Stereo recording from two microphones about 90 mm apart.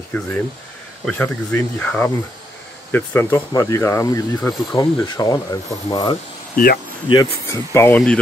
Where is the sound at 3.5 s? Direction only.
35° left (ahead or behind).